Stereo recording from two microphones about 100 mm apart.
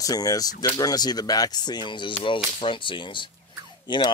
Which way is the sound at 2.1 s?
65° left (ahead or behind).